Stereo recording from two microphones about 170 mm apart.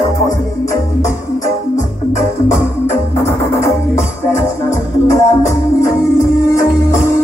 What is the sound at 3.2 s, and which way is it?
Music, 15° left (ahead or behind).